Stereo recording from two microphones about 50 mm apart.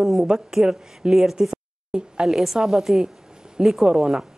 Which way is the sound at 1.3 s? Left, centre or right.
Centre.